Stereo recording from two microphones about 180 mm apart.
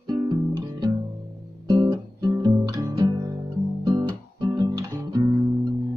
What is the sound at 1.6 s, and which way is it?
Guitar, 25° right (ahead or behind).